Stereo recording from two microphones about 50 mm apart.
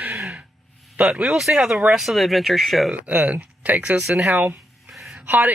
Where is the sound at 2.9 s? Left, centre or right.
Right.